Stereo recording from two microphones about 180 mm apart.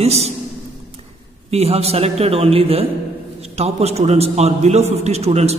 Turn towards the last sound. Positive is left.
turn(degrees=-35)  # may be behind; listen again after turning